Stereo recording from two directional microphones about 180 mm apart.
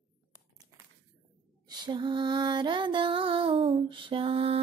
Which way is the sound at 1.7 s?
25° right (ahead or behind).